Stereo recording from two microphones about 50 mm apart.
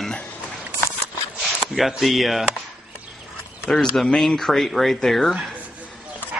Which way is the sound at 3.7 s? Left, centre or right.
Centre.